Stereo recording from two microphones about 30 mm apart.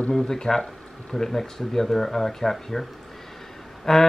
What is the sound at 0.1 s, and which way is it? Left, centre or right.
Speech, centre.